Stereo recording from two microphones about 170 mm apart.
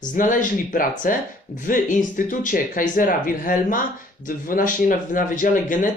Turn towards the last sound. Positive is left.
turn(degrees=50)  # may be behind; listen again after turning